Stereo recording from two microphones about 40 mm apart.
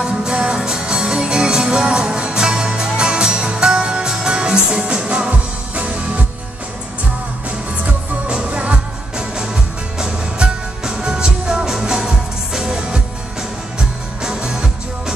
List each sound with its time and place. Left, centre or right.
0.0 s music: centre
7.8 s music: right
9.1 s music: centre